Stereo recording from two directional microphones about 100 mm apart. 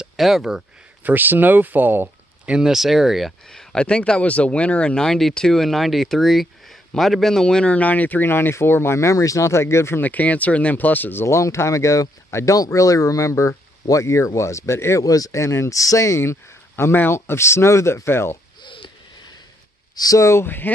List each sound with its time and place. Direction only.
0.0 s speech: 5° right (ahead or behind)
1.0 s speech: 20° right (ahead or behind); by 18.4 s 25° left (ahead or behind)
18.6 s a sound: 55° left (ahead or behind)
20.0 s speech: 35° left (ahead or behind)